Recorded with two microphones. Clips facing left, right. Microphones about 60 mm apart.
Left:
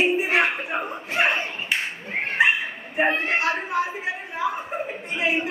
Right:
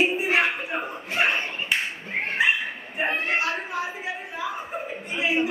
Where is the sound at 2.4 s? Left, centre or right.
Left.